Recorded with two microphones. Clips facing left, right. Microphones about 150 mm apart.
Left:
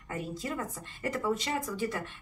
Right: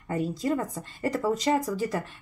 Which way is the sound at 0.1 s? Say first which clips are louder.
Right 9 dB; 40° right (ahead or behind).